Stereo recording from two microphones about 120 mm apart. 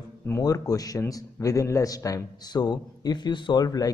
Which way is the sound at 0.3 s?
30° left (ahead or behind).